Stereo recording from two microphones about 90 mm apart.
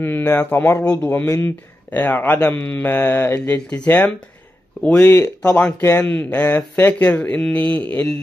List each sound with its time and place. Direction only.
0.0 s speech: 25° left (ahead or behind)
0.8 s speech: 10° left (ahead or behind)
1.2 s speech: 25° left (ahead or behind)